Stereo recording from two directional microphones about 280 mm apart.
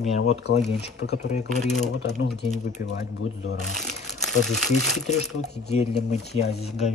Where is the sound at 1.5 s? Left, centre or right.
Centre.